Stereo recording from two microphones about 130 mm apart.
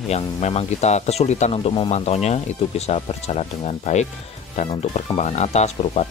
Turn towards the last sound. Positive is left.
turn(degrees=55)  # may be behind; listen again after turning